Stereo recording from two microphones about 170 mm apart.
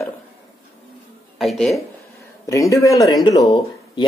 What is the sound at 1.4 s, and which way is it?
Speech, centre (ahead or behind).